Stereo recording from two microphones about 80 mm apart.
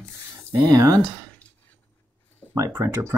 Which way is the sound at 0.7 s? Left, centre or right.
Right.